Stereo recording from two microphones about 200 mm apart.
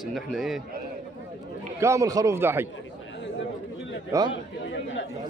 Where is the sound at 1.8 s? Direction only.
15° right (ahead or behind).